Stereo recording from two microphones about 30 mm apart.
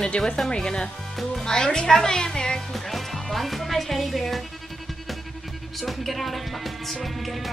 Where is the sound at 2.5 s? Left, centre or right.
Centre.